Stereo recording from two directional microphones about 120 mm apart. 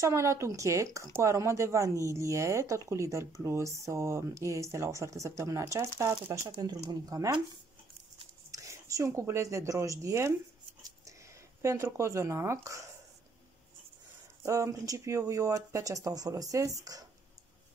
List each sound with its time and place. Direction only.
0.0 s speech: 25° right (ahead or behind)
6.5 s speech: 35° right (ahead or behind)
8.5 s speech: 25° right (ahead or behind)
10.8 s a sound: 25° right (ahead or behind)
14.4 s speech: 25° right (ahead or behind)